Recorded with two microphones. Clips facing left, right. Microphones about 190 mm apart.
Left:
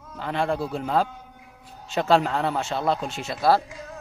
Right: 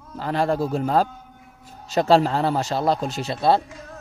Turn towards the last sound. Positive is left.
turn(degrees=-25)  # may be behind; listen again after turning